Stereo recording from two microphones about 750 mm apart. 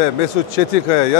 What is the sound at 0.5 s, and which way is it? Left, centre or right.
Speech, left.